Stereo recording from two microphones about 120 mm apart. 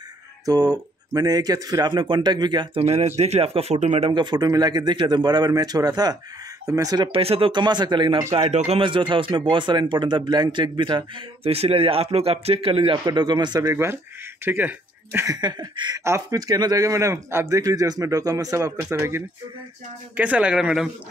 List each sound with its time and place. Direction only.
0.5 s speech: 35° right (ahead or behind)
2.8 s speech: 65° right (ahead or behind)
4.1 s speech: 40° right (ahead or behind)
7.1 s speech: 50° right (ahead or behind)
8.3 s speech: 65° right (ahead or behind)
8.8 s speech: 45° right (ahead or behind)
12.9 s speech: 40° right (ahead or behind)
14.4 s speech: 15° right (ahead or behind)
15.2 s speech: 35° right (ahead or behind)
16.0 s speech: 25° right (ahead or behind)
20.2 s speech: 10° right (ahead or behind)